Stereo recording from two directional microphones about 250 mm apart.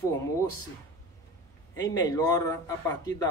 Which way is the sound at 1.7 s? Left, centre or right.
Centre.